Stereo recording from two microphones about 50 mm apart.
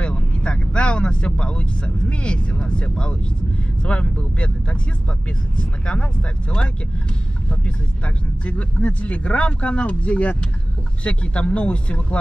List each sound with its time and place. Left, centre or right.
0.0 s speech: centre
7.4 s speech: left